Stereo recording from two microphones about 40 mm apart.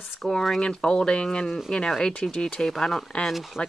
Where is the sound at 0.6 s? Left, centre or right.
Left.